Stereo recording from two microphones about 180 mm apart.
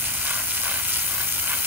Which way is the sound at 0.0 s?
10° right (ahead or behind).